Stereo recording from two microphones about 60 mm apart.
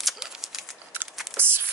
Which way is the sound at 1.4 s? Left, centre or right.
Right.